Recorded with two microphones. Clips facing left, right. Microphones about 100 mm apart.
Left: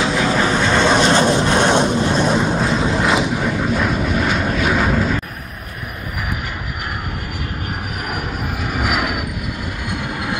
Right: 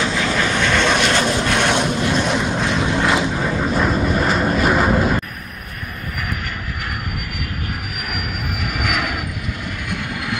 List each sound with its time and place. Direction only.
0.0 s vehicle: 20° left (ahead or behind)
3.5 s vehicle: centre (ahead or behind)
8.1 s train: 20° left (ahead or behind)